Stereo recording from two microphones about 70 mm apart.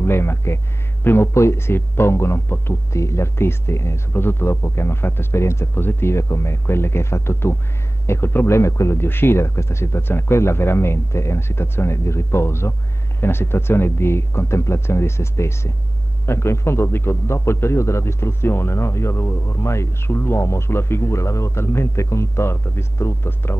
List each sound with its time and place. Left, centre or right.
0.0 s a man's voice: left
2.9 s a man's voice: left